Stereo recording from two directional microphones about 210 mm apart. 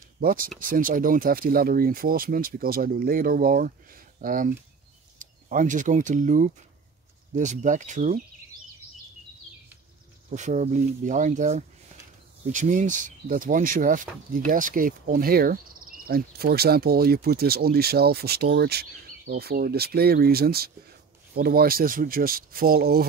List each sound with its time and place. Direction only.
0.2 s speech: 40° right (ahead or behind)
10.3 s speech: 35° right (ahead or behind)